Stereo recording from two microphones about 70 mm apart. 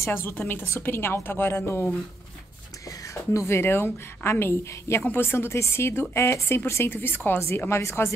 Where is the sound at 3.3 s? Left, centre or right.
Left.